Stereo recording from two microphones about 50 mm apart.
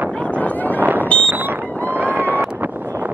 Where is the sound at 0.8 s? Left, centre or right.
Right.